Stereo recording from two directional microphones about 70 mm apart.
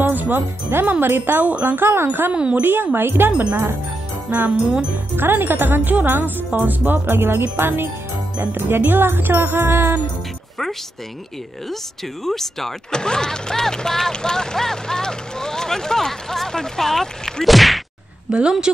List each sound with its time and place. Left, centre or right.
0.0 s speech: right
1.0 s music: right
2.3 s speech: centre
2.6 s music: right
4.3 s speech: right
7.5 s music: right
12.3 s speech: centre
18.3 s speech: centre